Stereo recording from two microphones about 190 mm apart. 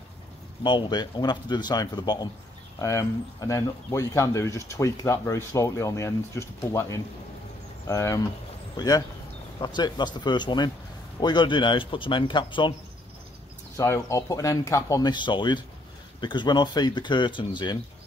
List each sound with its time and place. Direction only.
0.7 s speech: 25° left (ahead or behind)
13.7 s speech: 15° left (ahead or behind)